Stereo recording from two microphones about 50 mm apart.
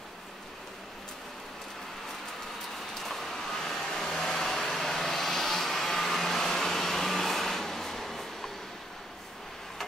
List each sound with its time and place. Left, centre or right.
2.9 s vehicle: centre